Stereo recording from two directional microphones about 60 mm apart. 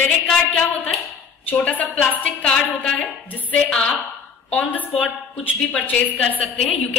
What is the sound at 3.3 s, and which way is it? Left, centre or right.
A woman's voice, left.